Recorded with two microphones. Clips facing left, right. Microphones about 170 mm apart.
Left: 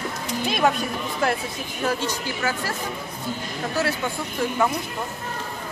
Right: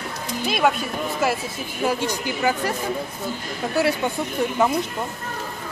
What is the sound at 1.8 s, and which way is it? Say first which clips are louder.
Speech: right 2 dB; 15° right (ahead or behind).